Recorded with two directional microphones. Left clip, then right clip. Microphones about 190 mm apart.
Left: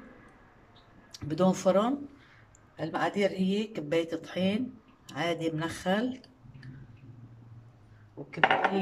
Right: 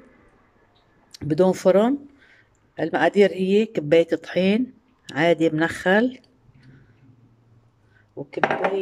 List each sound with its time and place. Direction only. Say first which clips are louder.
1.1 s speech: right 9 dB; 40° right (ahead or behind)
8.2 s speech: right 10 dB; 45° right (ahead or behind)